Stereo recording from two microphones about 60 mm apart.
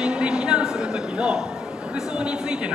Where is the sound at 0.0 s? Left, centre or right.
Centre.